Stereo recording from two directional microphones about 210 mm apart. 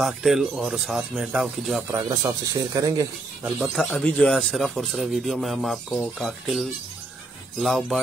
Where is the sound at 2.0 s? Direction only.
15° right (ahead or behind).